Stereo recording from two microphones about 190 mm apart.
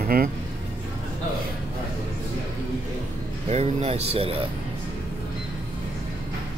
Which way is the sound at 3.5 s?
35° right (ahead or behind).